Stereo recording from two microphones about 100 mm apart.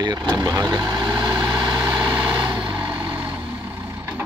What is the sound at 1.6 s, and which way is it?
Vehicle, 45° right (ahead or behind).